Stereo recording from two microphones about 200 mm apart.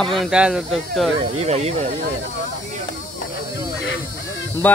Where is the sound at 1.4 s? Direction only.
30° right (ahead or behind).